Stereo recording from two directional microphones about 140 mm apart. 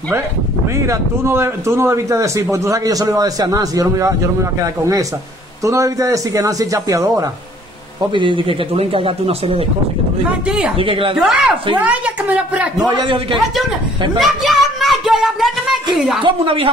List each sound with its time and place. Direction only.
0.8 s a man's voice: 20° right (ahead or behind)
8.1 s speech: 35° right (ahead or behind)
10.8 s speech: 40° right (ahead or behind)
11.1 s a woman's voice: 5° right (ahead or behind)
12.8 s speech: 30° right (ahead or behind)
14.1 s speech: centre (ahead or behind)
16.2 s speech: 40° right (ahead or behind)